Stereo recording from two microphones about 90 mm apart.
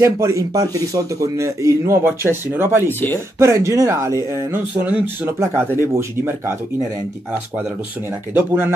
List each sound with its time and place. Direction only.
0.0 s speech: 35° right (ahead or behind)
2.9 s speech: 25° left (ahead or behind)
3.3 s speech: 30° right (ahead or behind)
8.4 s speech: 25° right (ahead or behind)